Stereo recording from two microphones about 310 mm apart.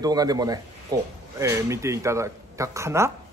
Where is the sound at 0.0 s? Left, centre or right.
Centre.